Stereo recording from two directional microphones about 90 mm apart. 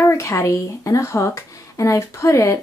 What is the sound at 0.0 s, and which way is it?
Speech, 30° left (ahead or behind).